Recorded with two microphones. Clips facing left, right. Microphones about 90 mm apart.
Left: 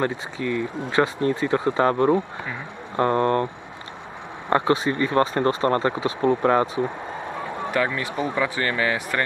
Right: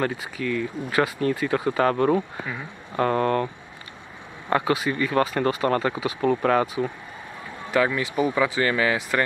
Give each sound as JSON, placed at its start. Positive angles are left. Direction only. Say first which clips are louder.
{"t": 0.0, "sound": "speech", "louder": "left 1 dB", "side_deg": 20}
{"t": 4.5, "sound": "speech", "louder": "left 2 dB", "side_deg": 30}
{"t": 7.7, "sound": "speech", "louder": "right 3 dB", "side_deg": -10}